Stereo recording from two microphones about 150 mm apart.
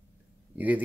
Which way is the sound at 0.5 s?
10° right (ahead or behind).